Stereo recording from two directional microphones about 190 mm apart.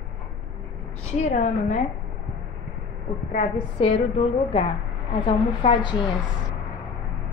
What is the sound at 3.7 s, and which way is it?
A woman's voice, 30° left (ahead or behind).